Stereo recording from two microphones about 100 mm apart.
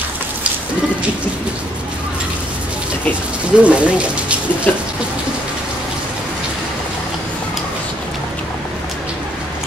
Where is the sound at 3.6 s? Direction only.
10° right (ahead or behind).